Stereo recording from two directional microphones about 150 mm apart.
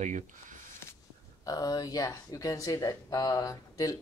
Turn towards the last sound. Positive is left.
turn(degrees=25)  # may be behind; listen again after turning